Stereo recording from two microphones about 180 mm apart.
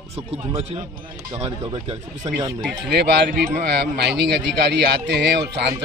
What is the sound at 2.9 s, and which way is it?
Speech, 65° right (ahead or behind).